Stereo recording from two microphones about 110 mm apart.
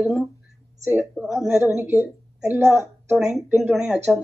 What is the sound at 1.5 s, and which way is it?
Speech, 25° right (ahead or behind).